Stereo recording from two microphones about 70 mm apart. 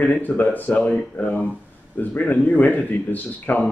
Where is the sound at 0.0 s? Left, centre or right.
Left.